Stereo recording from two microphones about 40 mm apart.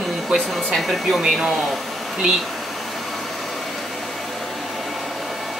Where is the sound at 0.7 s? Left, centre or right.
Centre.